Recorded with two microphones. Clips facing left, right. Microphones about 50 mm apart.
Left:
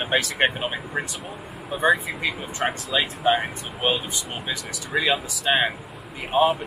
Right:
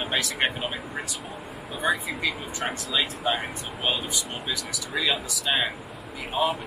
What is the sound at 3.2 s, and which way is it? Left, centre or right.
Speech, centre.